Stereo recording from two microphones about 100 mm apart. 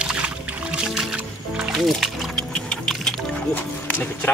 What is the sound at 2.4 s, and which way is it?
Music, 10° left (ahead or behind).